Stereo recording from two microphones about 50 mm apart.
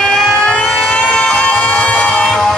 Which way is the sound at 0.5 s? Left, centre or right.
Left.